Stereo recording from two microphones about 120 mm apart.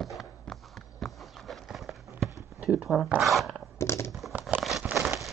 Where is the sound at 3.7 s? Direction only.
25° left (ahead or behind).